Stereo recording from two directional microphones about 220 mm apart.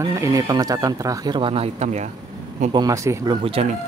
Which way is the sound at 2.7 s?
15° right (ahead or behind).